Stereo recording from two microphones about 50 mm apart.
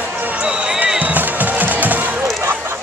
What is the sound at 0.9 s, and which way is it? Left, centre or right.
Music, right.